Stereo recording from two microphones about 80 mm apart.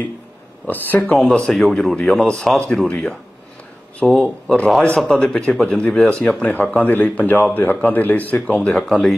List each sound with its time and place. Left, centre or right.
0.7 s speech: left
1.1 s speech: centre